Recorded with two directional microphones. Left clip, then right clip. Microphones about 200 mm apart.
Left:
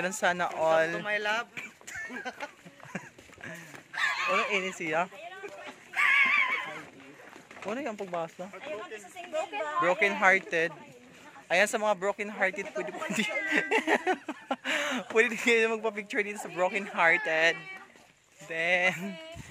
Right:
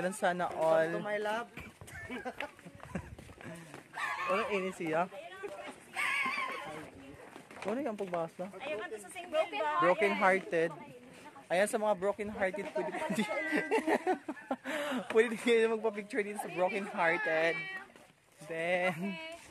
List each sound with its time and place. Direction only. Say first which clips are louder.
0.0 s speech: left 4 dB; 10° left (ahead or behind)
1.0 s speech: left 5 dB; 20° right (ahead or behind)
2.9 s clip-clop: left 4 dB; centre (ahead or behind)
3.9 s bow-wow: left 6 dB; 20° right (ahead or behind)
4.4 s speech: left 5 dB; centre (ahead or behind)
5.9 s horse: left 10 dB; 10° right (ahead or behind)
7.7 s speech: left 2 dB; 5° right (ahead or behind)
9.3 s a woman's voice: even; 45° left (ahead or behind)
9.8 s speech: left 5 dB; 5° right (ahead or behind)
11.4 s speech: left 5 dB; 10° left (ahead or behind)